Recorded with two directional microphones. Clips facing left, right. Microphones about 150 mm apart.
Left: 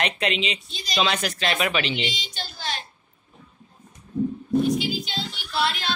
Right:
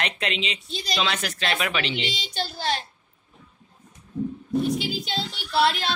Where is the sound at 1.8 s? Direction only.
30° right (ahead or behind).